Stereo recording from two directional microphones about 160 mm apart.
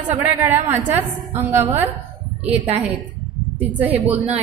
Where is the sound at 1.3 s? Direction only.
45° right (ahead or behind).